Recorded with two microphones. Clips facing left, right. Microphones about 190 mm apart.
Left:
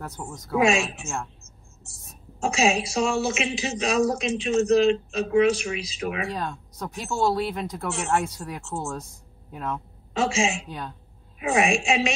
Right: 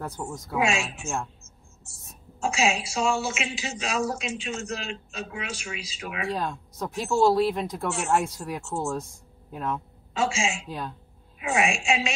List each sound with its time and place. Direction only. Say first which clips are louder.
0.0 s speech: right 2 dB; centre (ahead or behind)
0.6 s a woman's voice: left 5 dB; 40° left (ahead or behind)
1.0 s speech: right 1 dB; centre (ahead or behind)
2.4 s a woman's voice: left 3 dB; 40° left (ahead or behind)
6.3 s speech: right 1 dB; centre (ahead or behind)
10.1 s a woman's voice: left 3 dB; 35° left (ahead or behind)